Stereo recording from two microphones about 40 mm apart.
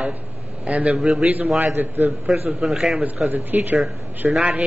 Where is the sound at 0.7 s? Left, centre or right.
Right.